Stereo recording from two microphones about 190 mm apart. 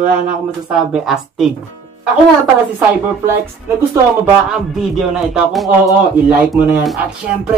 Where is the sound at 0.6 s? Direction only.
5° right (ahead or behind).